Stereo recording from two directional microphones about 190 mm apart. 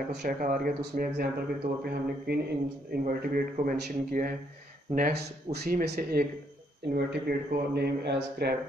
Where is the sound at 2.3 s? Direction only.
60° right (ahead or behind).